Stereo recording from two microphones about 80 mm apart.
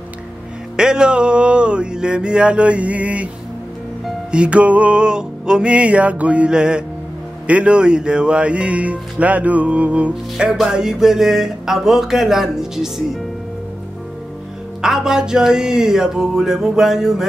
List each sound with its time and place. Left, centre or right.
0.7 s speech: centre
4.3 s speech: centre
14.8 s speech: centre